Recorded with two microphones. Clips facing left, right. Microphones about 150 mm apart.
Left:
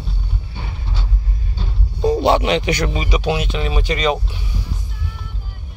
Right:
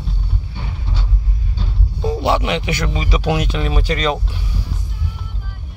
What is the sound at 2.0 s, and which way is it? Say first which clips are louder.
Speech: left 3 dB; 20° left (ahead or behind).